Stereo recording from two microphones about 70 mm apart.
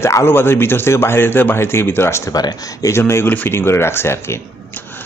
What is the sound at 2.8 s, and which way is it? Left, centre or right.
A man's voice, left.